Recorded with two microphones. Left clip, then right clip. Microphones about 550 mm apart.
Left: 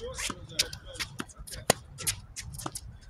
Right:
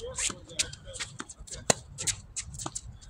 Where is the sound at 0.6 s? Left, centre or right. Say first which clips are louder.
Left 4 dB; left.